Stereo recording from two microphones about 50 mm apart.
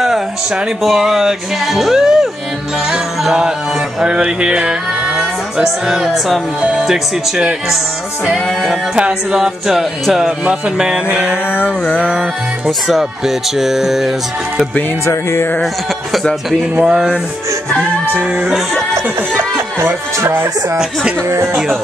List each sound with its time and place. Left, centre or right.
0.8 s music: centre
8.9 s music: right
9.4 s music: centre; by 11.3 s right
12.6 s music: centre
16.8 s music: centre
18.1 s music: right
20.2 s speech: right